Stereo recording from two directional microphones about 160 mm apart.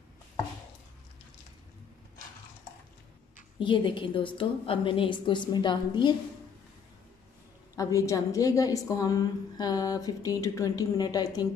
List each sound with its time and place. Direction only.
3.5 s a woman's voice: 30° left (ahead or behind)
7.7 s a woman's voice: 20° left (ahead or behind)